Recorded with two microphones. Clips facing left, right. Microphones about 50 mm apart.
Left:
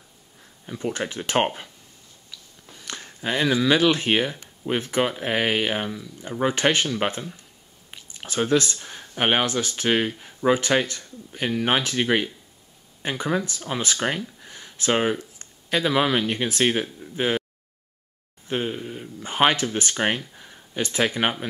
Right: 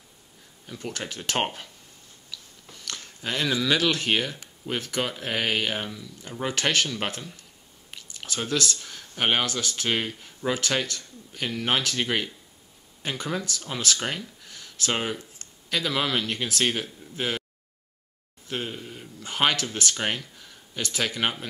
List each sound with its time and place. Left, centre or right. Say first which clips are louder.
0.7 s speech: left 6 dB; left
2.3 s biting: right 2 dB; centre
2.7 s speech: left 2 dB; centre
18.5 s speech: left 6 dB; centre